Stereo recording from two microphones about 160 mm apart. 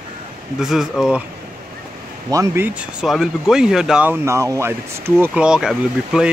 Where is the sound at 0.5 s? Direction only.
Centre (ahead or behind).